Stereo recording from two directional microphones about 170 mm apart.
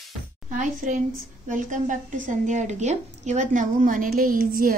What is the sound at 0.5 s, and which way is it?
A woman's voice, 50° right (ahead or behind).